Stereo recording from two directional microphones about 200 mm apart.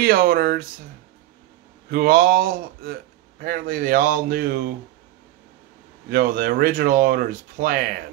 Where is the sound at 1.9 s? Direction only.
50° right (ahead or behind).